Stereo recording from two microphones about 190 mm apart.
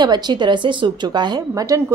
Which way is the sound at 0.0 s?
25° right (ahead or behind).